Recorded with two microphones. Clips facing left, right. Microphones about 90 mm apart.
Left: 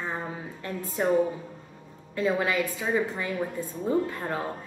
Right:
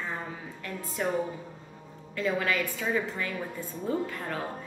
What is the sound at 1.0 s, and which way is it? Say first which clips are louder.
A woman's voice: left 6 dB; 25° left (ahead or behind).